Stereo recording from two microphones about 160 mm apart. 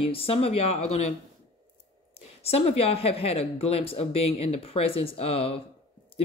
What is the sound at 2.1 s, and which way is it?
Speech, 40° left (ahead or behind).